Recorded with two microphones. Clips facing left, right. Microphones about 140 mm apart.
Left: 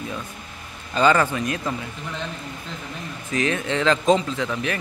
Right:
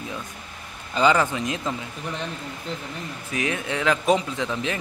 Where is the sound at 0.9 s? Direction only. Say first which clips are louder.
Left 1 dB; 15° right (ahead or behind).